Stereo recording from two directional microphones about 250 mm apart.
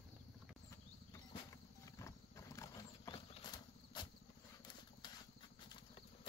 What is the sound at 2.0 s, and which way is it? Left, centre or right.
Horse, centre.